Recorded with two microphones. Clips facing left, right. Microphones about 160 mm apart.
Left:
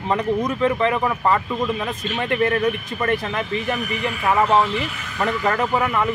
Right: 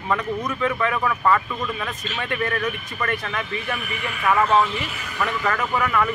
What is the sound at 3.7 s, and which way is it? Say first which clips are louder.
Speech: left 5 dB; 40° left (ahead or behind).